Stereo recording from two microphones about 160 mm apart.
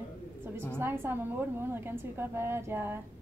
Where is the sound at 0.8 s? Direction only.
15° right (ahead or behind).